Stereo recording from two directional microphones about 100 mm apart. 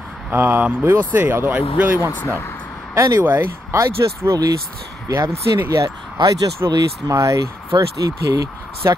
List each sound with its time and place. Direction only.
0.3 s speech: 20° right (ahead or behind); by 5.3 s 40° right (ahead or behind)
5.6 s speech: 25° right (ahead or behind)
6.1 s speech: 40° right (ahead or behind)